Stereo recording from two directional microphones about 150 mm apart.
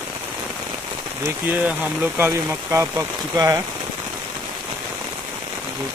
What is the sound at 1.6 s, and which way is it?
Speech, 10° right (ahead or behind).